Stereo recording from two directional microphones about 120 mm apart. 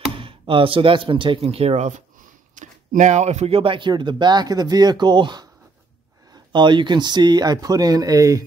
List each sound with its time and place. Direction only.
0.2 s speech: 50° right (ahead or behind); by 2.0 s 80° right
2.5 s speech: 90° right; by 8.5 s 30° right (ahead or behind)